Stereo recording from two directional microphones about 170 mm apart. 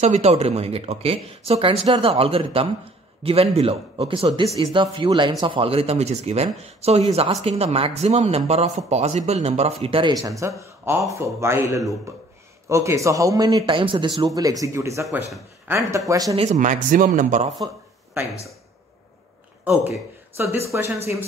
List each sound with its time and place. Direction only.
0.0 s a man's voice: 40° right (ahead or behind)
10.2 s a man's voice: 20° right (ahead or behind)
16.3 s speech: 45° right (ahead or behind)
19.6 s a man's voice: 5° right (ahead or behind)